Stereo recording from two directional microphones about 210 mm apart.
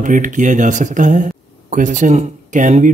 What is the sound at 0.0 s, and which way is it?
Speech, 40° right (ahead or behind).